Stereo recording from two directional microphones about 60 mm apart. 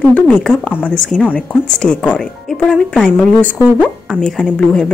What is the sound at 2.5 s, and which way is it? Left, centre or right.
Speech, centre.